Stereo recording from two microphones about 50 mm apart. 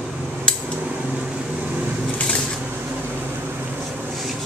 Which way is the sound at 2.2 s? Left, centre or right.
Left.